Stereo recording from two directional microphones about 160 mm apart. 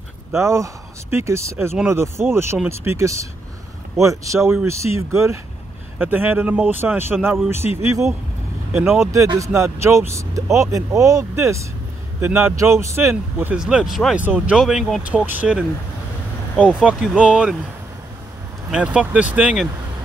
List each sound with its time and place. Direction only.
0.4 s speech: 20° right (ahead or behind)
13.1 s speech: 5° right (ahead or behind)
16.6 s speech: 5° right (ahead or behind)
18.7 s speech: 5° right (ahead or behind)